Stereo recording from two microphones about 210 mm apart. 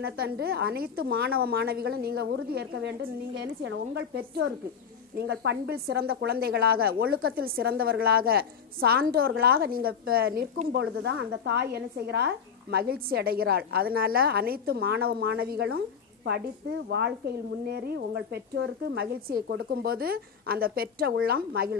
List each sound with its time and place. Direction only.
0.0 s speech: 50° right (ahead or behind)
11.0 s speech: 55° right (ahead or behind)
17.6 s speech: 50° right (ahead or behind)